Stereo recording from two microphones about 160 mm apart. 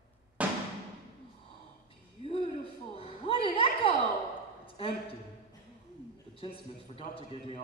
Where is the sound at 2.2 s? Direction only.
35° left (ahead or behind).